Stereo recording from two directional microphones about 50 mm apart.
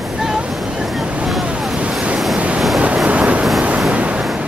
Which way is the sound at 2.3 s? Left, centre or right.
Right.